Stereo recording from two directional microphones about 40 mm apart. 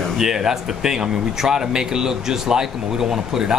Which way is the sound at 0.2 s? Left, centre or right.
Centre.